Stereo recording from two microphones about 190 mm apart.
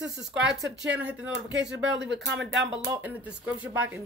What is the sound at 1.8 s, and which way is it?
Speech, 70° right (ahead or behind).